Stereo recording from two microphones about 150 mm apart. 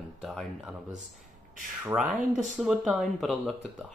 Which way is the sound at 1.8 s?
5° right (ahead or behind).